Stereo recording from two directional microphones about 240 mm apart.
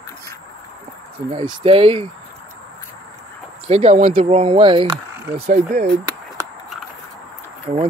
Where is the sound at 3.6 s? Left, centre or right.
Right.